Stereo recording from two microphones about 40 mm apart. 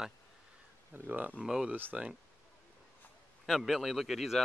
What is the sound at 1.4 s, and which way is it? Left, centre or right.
Speech, centre.